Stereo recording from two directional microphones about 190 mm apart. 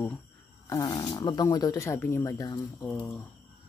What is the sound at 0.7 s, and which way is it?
Speech, 20° left (ahead or behind).